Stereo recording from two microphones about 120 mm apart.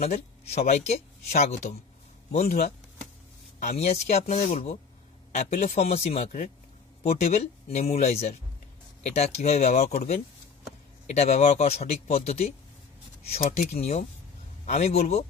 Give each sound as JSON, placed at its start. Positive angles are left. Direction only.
{"t": 0.0, "sound": "speech", "side_deg": 65}
{"t": 7.0, "sound": "speech", "side_deg": 65}